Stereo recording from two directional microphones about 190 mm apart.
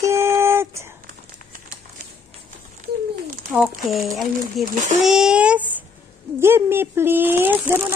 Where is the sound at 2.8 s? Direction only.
45° right (ahead or behind).